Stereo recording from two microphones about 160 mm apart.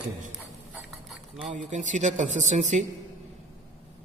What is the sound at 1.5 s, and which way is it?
Speech, 50° right (ahead or behind).